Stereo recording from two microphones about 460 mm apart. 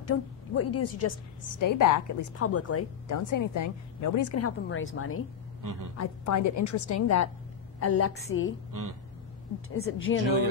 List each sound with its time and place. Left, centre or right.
0.0 s a woman's voice: left
5.6 s speech: right
5.9 s a woman's voice: left
9.8 s a woman's voice: left